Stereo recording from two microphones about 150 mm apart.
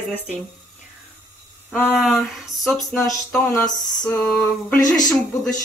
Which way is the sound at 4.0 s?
5° left (ahead or behind).